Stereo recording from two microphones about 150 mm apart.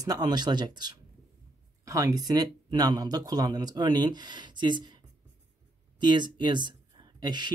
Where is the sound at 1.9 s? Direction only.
25° right (ahead or behind).